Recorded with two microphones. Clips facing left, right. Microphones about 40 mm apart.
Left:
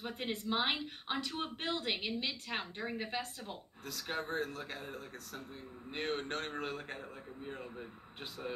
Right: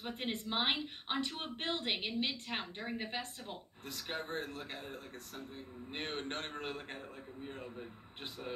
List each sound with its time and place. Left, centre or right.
0.3 s speech: right